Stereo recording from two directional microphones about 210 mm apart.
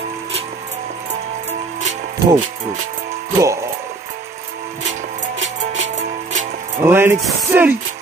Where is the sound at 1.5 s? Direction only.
35° right (ahead or behind).